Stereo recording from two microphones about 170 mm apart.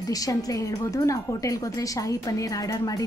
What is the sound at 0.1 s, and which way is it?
Speech, 20° left (ahead or behind).